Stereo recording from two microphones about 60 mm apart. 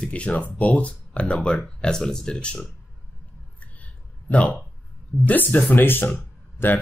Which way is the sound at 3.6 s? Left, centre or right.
Left.